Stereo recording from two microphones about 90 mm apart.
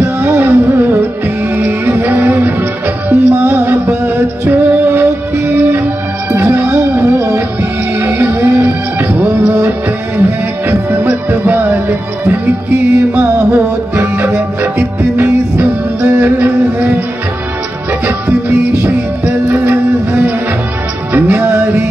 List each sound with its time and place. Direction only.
0.0 s music: 25° right (ahead or behind)
10.7 s music: 25° right (ahead or behind)
18.0 s music: 25° right (ahead or behind)